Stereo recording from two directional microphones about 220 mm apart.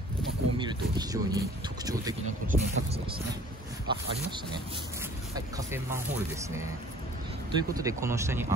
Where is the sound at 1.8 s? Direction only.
15° right (ahead or behind).